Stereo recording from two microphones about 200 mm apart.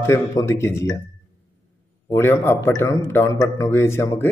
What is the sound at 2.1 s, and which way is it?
A man's voice, 10° left (ahead or behind).